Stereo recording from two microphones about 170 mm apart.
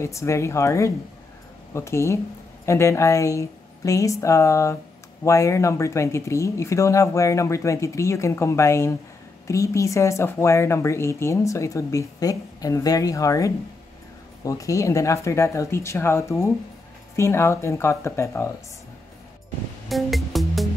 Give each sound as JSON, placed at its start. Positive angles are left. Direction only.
{"t": 0.0, "sound": "speech", "side_deg": 15}
{"t": 19.9, "sound": "music", "side_deg": 0}